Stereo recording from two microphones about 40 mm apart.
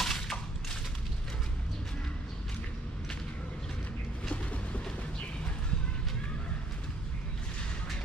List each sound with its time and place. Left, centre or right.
0.0 s gunshot: centre